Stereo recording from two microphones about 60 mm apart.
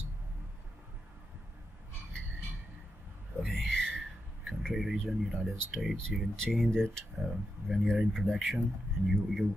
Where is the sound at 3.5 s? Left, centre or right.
Centre.